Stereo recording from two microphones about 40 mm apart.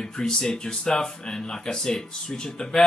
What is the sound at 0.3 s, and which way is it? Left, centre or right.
Speech, centre.